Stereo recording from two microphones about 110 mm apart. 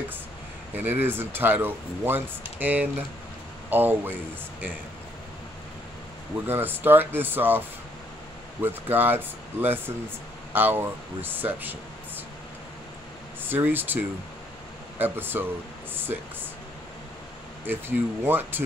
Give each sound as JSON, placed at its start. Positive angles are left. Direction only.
{"t": 0.7, "sound": "speech", "side_deg": -20}
{"t": 6.4, "sound": "speech", "side_deg": -20}
{"t": 8.6, "sound": "speech", "side_deg": -20}
{"t": 13.5, "sound": "speech", "side_deg": -20}
{"t": 15.0, "sound": "speech", "side_deg": -20}
{"t": 17.6, "sound": "speech", "side_deg": -20}